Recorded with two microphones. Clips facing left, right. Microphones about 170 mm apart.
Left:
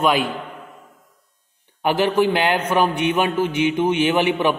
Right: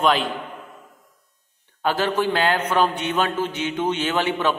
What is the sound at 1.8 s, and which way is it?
A man's voice, 15° left (ahead or behind).